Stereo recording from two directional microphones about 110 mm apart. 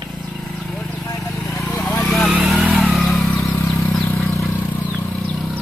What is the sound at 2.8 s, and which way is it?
Vehicle, centre (ahead or behind).